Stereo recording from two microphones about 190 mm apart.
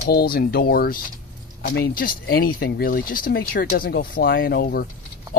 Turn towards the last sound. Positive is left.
turn(degrees=55)  # may be behind; listen again after turning